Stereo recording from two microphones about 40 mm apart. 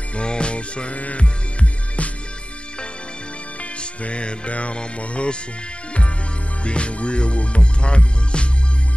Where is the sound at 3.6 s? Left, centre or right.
Left.